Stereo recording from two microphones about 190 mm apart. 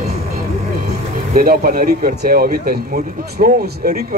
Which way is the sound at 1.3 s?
50° right (ahead or behind).